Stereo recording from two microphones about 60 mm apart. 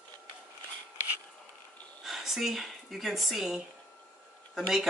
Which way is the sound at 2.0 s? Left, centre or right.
Centre.